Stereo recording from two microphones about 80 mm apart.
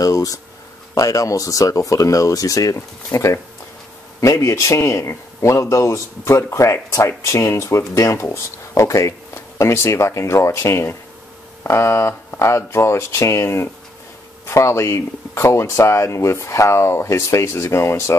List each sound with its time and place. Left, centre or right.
0.0 s a man's voice: left